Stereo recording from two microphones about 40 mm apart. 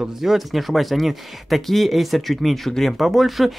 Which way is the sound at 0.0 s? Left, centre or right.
Centre.